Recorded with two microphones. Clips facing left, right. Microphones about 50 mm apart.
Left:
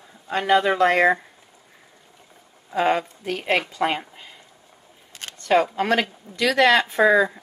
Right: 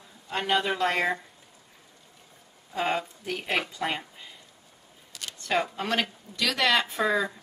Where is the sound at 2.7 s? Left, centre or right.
Left.